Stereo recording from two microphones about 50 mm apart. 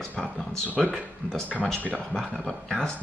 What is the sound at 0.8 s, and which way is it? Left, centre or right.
Speech, centre.